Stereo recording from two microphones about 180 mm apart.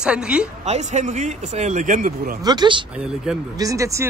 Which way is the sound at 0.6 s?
40° right (ahead or behind).